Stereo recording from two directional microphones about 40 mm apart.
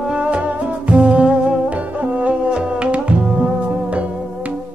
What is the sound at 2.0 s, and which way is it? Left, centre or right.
Music, right.